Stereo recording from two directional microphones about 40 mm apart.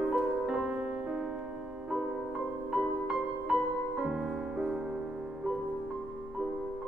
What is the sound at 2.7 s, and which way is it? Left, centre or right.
Music, centre.